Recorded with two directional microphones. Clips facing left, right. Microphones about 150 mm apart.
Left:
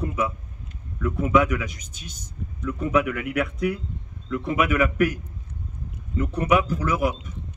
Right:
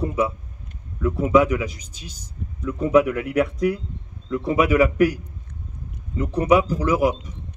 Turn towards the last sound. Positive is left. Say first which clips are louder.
# right 4 dB
turn(degrees=-35)  # may be behind; listen again after turning